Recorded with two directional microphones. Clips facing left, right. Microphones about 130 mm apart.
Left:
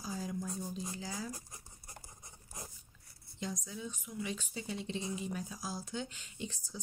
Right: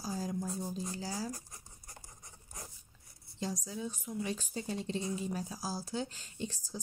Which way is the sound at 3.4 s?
35° right (ahead or behind).